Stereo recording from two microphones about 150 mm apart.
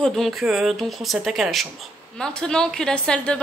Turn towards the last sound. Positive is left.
turn(degrees=5)  # may be behind; listen again after turning